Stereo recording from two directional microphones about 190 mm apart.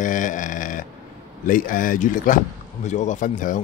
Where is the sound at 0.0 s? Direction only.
45° left (ahead or behind).